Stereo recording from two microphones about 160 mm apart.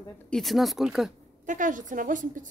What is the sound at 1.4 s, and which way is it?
A woman's voice, 55° right (ahead or behind).